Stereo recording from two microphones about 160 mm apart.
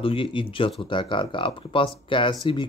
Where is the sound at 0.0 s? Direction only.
35° left (ahead or behind).